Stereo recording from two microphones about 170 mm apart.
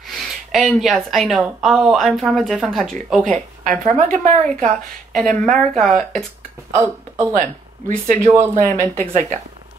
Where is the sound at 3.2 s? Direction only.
45° right (ahead or behind).